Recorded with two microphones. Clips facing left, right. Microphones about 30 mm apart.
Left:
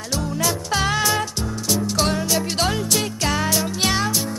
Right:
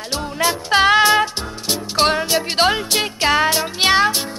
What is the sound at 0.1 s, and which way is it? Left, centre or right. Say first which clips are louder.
Music: right 3 dB; right.